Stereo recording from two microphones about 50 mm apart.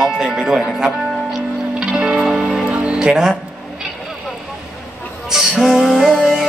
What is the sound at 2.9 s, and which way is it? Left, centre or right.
Speech, centre.